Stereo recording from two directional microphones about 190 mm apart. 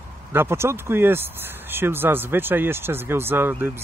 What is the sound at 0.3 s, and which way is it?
Speech, 10° right (ahead or behind).